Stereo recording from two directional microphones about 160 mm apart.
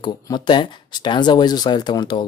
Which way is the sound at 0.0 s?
30° left (ahead or behind).